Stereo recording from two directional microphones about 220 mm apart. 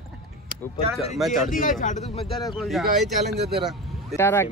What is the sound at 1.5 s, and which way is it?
Speech, 40° left (ahead or behind).